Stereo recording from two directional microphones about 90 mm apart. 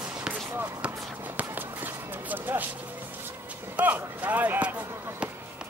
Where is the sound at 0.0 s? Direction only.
10° right (ahead or behind).